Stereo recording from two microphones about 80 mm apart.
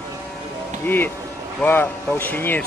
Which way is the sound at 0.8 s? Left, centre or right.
Left.